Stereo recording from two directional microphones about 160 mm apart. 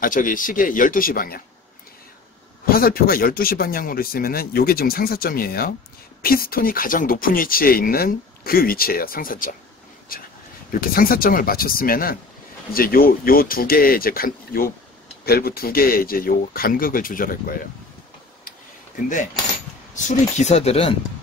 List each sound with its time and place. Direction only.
0.0 s speech: 60° left (ahead or behind)
2.6 s speech: 65° left (ahead or behind)
19.9 s speech: 50° left (ahead or behind)